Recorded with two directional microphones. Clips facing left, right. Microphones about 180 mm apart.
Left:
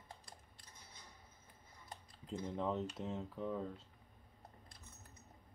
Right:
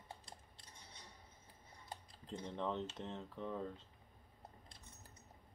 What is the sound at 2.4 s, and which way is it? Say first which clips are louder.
Speech: left 2 dB; 5° left (ahead or behind).